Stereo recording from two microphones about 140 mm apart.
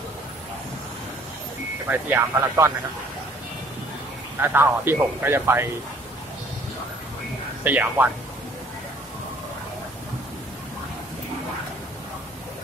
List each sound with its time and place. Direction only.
1.9 s speech: 15° right (ahead or behind)
4.4 s speech: 15° right (ahead or behind)
7.6 s speech: 15° right (ahead or behind)